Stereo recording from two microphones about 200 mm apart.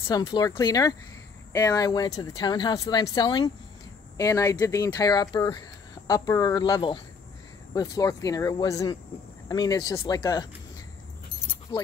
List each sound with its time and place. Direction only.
0.1 s speech: 20° left (ahead or behind)
11.7 s speech: 25° left (ahead or behind)